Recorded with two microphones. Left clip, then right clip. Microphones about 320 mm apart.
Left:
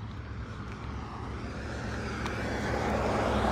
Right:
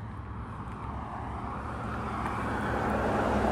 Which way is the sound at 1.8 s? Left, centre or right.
Right.